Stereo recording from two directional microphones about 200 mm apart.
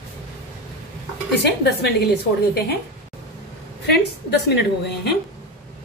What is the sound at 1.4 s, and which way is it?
A woman's voice, 55° left (ahead or behind).